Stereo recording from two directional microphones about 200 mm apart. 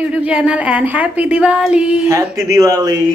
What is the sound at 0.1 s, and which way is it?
Speech, 5° right (ahead or behind).